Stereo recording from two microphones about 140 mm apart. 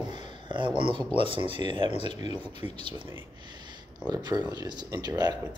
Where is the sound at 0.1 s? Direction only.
35° right (ahead or behind).